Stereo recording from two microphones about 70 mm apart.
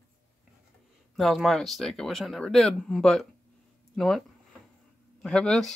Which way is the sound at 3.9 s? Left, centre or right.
Centre.